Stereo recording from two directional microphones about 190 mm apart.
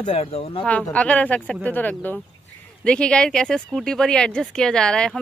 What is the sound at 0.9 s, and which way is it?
Speech, 5° left (ahead or behind).